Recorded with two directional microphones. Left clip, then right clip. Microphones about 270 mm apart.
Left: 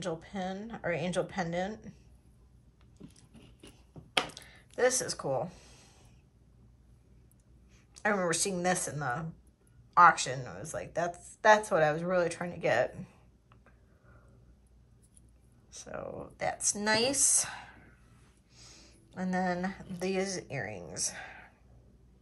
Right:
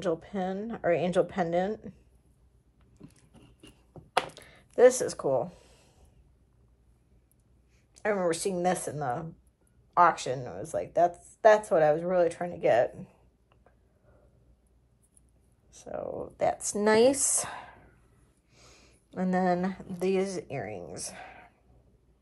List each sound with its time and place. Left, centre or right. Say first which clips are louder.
0.0 s speech: right 6 dB; centre
4.3 s a sound: right 1 dB; centre
7.9 s speech: right 2 dB; centre
15.7 s a woman's voice: right 5 dB; centre